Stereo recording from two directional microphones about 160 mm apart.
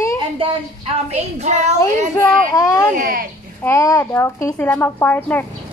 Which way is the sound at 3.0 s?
65° right (ahead or behind).